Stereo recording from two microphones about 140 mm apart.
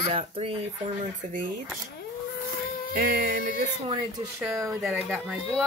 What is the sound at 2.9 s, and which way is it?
Music, 90° right.